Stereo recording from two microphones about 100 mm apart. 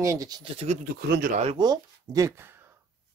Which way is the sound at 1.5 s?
45° right (ahead or behind).